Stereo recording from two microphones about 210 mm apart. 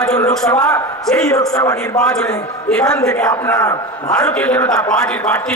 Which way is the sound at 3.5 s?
15° left (ahead or behind).